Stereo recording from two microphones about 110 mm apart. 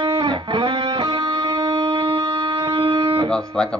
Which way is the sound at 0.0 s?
50° right (ahead or behind).